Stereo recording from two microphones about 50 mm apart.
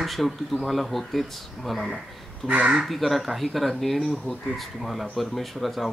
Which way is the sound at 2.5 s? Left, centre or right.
Right.